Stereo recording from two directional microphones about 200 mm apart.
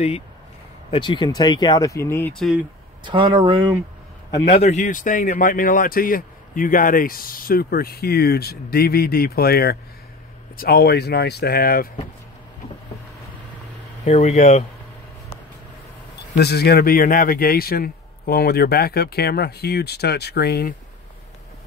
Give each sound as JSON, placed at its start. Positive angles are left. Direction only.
{"t": 0.8, "sound": "speech", "side_deg": 25}
{"t": 3.0, "sound": "speech", "side_deg": -25}
{"t": 4.6, "sound": "speech", "side_deg": 35}
{"t": 14.0, "sound": "speech", "side_deg": 35}
{"t": 16.3, "sound": "speech", "side_deg": 55}